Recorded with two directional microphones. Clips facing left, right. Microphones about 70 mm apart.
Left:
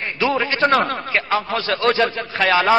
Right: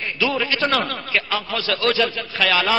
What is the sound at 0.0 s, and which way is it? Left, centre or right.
A man's voice, left.